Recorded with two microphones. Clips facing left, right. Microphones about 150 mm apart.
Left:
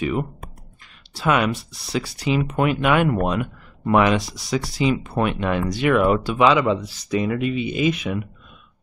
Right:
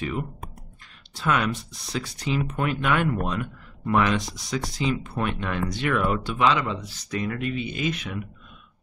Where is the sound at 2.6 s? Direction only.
10° left (ahead or behind).